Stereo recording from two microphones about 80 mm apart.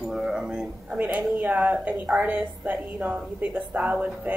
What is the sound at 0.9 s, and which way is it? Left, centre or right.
A woman's voice, right.